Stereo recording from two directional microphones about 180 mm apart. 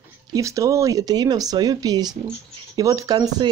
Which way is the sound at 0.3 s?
20° right (ahead or behind).